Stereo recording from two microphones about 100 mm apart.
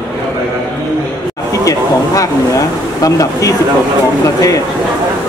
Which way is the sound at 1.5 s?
35° left (ahead or behind).